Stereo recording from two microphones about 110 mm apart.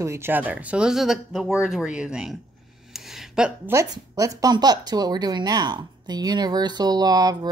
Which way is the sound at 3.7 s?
30° right (ahead or behind).